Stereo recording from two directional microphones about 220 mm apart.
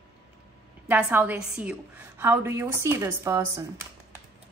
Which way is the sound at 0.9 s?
10° right (ahead or behind).